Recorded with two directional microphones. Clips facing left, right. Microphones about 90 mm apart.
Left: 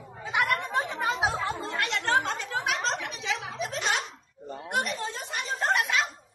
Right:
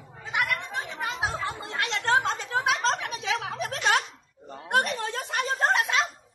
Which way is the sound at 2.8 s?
50° right (ahead or behind).